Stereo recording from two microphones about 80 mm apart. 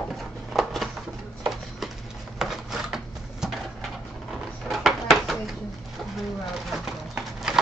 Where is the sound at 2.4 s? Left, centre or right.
Centre.